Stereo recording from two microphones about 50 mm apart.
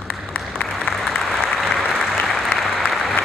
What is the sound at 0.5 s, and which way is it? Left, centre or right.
Applause, left.